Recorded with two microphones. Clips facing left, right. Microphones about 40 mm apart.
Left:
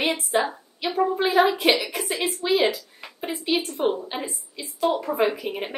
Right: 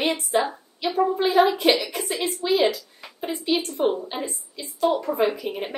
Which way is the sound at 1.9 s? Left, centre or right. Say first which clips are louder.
Even; centre.